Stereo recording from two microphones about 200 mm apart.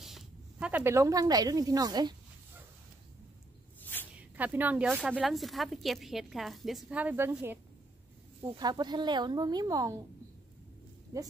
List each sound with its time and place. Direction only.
0.0 s speech: 5° right (ahead or behind); by 2.1 s 20° right (ahead or behind)
3.8 s a sound: 10° left (ahead or behind)
4.2 s a woman's voice: 10° right (ahead or behind)
8.5 s speech: 20° right (ahead or behind)
11.1 s speech: 15° right (ahead or behind)